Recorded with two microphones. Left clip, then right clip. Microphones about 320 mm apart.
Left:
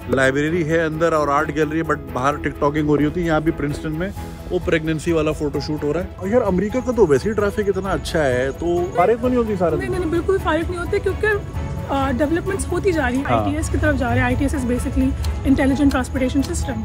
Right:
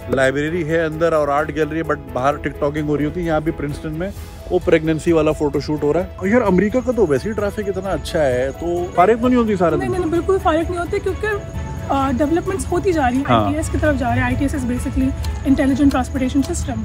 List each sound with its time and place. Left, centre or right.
0.1 s speech: centre
4.6 s speech: centre
6.9 s speech: centre
8.9 s speech: right
9.8 s speech: centre